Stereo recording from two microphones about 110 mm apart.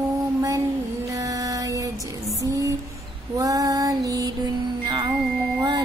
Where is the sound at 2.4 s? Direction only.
30° right (ahead or behind).